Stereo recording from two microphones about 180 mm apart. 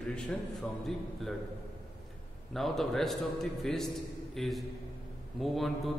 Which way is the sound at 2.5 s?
Centre (ahead or behind).